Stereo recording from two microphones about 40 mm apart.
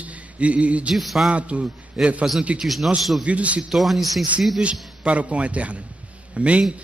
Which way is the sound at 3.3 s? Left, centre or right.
Right.